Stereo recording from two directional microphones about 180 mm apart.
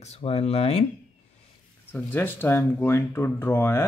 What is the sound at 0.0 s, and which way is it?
Speech, 35° left (ahead or behind).